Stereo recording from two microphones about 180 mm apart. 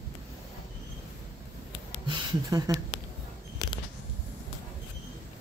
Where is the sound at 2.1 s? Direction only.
25° right (ahead or behind).